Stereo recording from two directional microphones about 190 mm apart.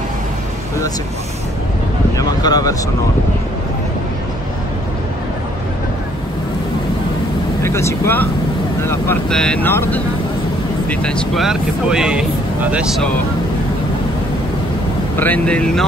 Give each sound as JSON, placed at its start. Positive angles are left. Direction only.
{"t": 2.1, "sound": "speech", "side_deg": 20}
{"t": 7.6, "sound": "speech", "side_deg": 15}
{"t": 15.1, "sound": "speech", "side_deg": 10}